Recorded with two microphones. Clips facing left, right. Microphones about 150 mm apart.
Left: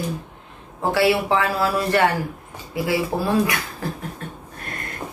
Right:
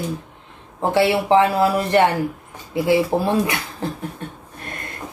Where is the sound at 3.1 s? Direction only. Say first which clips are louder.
Right 1 dB; 20° right (ahead or behind).